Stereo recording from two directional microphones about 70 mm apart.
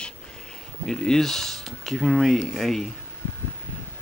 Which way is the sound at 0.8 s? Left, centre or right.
Centre.